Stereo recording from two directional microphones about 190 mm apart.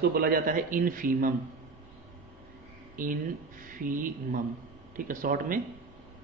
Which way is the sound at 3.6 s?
45° right (ahead or behind).